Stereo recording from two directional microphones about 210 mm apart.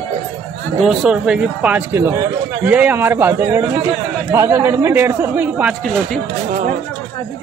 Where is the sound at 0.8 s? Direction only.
Centre (ahead or behind).